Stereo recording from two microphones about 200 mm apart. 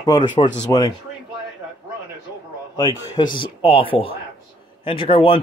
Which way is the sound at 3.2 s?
25° left (ahead or behind).